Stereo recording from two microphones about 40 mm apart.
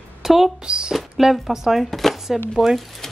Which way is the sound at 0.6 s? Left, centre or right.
Right.